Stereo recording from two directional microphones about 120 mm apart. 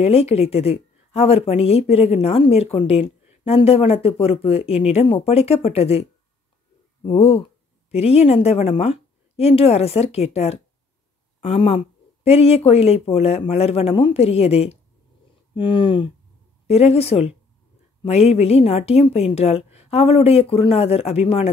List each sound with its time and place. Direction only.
0.0 s speech: 60° left (ahead or behind)
7.1 s speech: 60° left (ahead or behind)
11.4 s speech: 50° left (ahead or behind)
15.5 s speech: 45° left (ahead or behind)
16.6 s speech: 60° left (ahead or behind)